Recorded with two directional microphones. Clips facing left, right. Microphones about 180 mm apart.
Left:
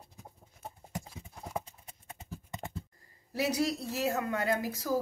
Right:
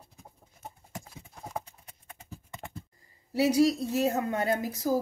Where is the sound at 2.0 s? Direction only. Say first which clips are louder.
Left 2 dB; 20° left (ahead or behind).